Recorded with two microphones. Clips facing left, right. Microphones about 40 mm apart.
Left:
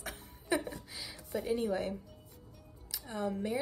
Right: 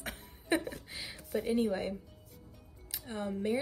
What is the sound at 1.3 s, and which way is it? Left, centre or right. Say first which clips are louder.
Speech: right 2 dB; centre.